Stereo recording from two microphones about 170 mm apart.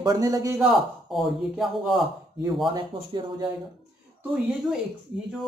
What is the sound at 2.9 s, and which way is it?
Speech, 30° right (ahead or behind).